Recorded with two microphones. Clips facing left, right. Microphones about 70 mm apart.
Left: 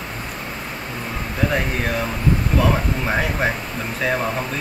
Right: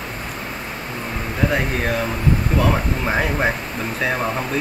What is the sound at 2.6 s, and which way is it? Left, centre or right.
Speech, centre.